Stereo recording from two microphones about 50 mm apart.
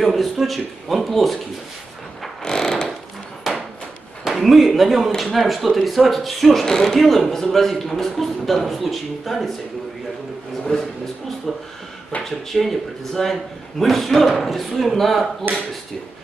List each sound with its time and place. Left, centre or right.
0.0 s speech: centre
2.4 s mechanisms: centre
3.4 s hammer: centre
4.2 s speech: centre
10.7 s speech: centre
15.5 s speech: right